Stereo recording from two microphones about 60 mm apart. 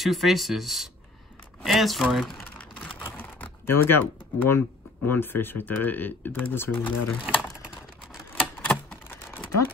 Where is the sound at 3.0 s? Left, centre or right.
Left.